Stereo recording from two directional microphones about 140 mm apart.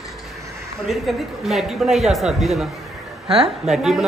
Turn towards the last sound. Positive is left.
turn(degrees=0)  # may be behind; listen again after turning